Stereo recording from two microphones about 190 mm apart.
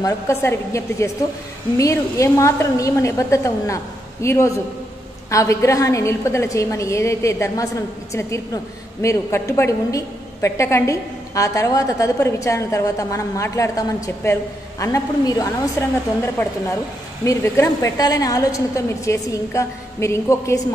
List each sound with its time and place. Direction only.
0.0 s a woman's voice: 15° left (ahead or behind)
17.2 s a woman's voice: 15° left (ahead or behind)